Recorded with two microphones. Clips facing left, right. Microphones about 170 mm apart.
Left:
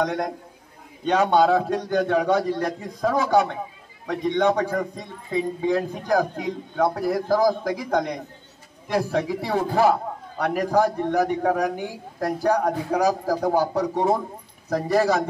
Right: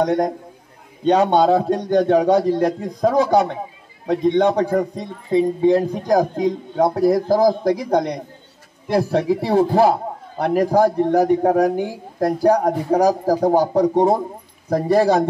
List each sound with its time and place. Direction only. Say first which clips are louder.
0.0 s a man's voice: right 6 dB; 35° right (ahead or behind)